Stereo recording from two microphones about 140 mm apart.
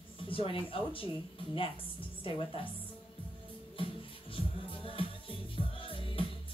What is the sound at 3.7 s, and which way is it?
Music, 40° left (ahead or behind).